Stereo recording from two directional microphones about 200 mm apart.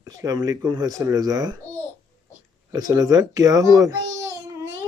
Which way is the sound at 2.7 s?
20° right (ahead or behind).